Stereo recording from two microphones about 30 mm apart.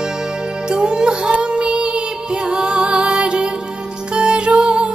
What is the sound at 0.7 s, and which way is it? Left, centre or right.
Music, right.